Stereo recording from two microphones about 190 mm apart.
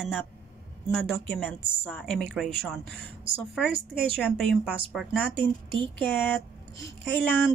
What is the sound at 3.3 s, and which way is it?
Speech, 30° right (ahead or behind).